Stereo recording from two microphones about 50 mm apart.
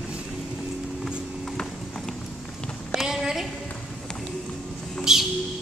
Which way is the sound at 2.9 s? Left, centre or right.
Centre.